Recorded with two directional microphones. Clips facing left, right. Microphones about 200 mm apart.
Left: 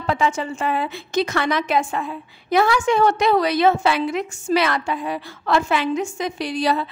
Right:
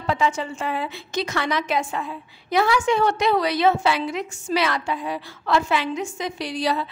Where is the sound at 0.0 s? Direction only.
55° left (ahead or behind).